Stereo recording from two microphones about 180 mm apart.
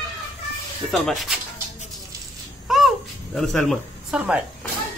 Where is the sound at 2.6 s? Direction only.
Centre (ahead or behind).